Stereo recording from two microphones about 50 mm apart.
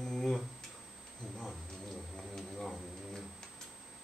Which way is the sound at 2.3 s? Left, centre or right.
Centre.